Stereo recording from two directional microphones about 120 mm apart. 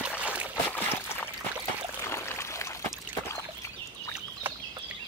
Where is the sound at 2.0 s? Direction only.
25° left (ahead or behind).